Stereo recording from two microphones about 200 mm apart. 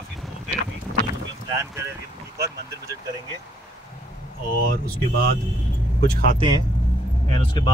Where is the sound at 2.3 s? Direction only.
15° right (ahead or behind).